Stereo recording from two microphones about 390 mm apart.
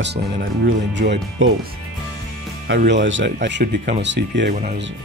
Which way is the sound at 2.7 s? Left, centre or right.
Right.